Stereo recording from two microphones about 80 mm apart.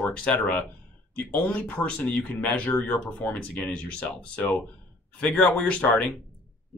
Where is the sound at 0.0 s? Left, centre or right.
Centre.